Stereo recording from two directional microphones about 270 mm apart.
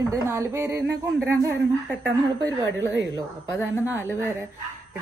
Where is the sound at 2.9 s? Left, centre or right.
Right.